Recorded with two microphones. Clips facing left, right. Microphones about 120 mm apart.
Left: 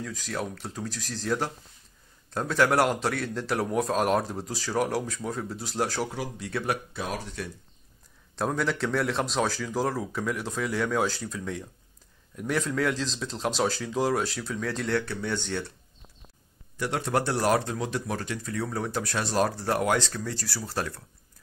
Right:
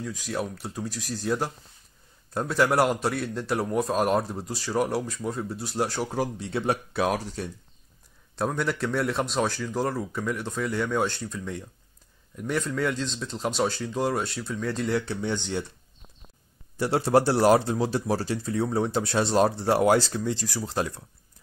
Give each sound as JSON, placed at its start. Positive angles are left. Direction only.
{"t": 0.0, "sound": "speech", "side_deg": -5}
{"t": 6.1, "sound": "speech", "side_deg": -40}
{"t": 6.4, "sound": "speech", "side_deg": -25}
{"t": 6.9, "sound": "speech", "side_deg": -60}
{"t": 8.4, "sound": "speech", "side_deg": 0}
{"t": 15.0, "sound": "speech", "side_deg": -20}
{"t": 16.7, "sound": "speech", "side_deg": -35}